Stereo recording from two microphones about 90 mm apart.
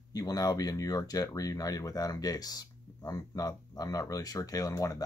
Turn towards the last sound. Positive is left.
turn(degrees=40)  # may be behind; listen again after turning